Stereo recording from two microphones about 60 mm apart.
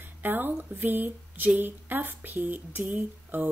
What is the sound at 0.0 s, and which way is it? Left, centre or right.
Speech, right.